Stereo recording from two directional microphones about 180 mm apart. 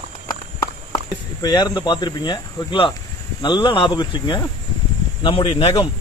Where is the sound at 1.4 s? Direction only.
20° left (ahead or behind).